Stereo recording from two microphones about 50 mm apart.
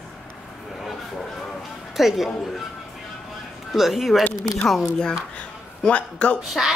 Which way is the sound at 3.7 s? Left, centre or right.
Centre.